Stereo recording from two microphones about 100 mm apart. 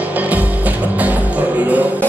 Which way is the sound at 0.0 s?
15° right (ahead or behind).